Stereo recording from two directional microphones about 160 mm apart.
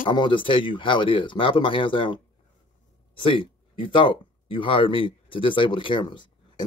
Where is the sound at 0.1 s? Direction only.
30° left (ahead or behind).